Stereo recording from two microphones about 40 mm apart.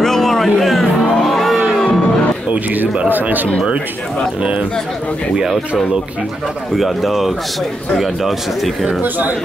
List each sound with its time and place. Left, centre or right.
0.0 s music: centre
3.1 s a sound: right
4.4 s speech: right
6.8 s a man's voice: centre